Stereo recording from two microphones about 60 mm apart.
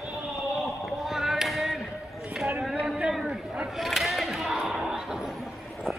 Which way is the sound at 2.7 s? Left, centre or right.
Centre.